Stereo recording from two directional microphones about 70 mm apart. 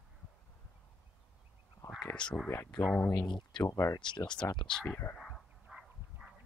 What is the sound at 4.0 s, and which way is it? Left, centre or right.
Speech, left.